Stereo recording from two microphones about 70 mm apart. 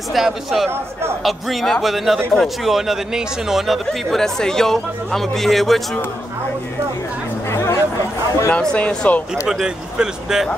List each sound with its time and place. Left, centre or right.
0.1 s speech: centre
7.4 s speech: left
8.5 s speech: centre
9.5 s speech: centre